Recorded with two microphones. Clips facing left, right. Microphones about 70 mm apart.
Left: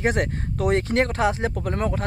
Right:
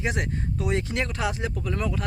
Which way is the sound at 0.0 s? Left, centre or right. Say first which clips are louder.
Left 5 dB; left.